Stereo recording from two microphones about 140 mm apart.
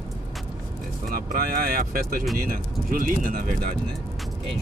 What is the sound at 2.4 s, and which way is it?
Speech, 90° right.